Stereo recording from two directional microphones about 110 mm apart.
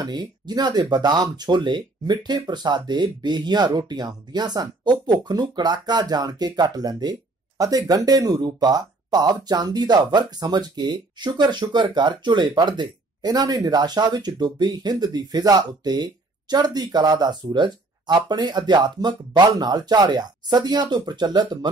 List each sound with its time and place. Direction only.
0.0 s speech: 40° right (ahead or behind)